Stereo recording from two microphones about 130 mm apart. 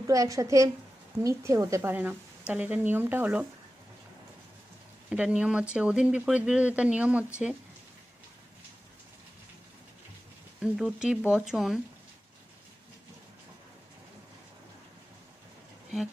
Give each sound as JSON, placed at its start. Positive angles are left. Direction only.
{"t": 0.0, "sound": "a woman's voice", "side_deg": -25}
{"t": 5.1, "sound": "speech", "side_deg": -10}
{"t": 10.6, "sound": "speech", "side_deg": -5}